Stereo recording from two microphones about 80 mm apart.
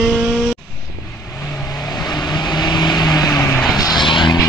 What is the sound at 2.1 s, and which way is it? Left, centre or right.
Vehicle, left.